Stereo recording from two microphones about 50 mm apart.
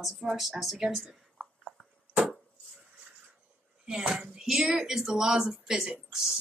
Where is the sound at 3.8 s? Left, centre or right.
Centre.